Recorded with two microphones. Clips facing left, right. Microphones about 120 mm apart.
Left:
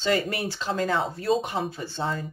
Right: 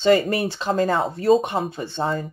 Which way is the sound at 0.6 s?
40° right (ahead or behind).